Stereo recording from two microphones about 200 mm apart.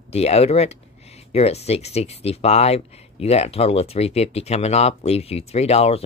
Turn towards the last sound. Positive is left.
turn(degrees=30)  # may be behind; listen again after turning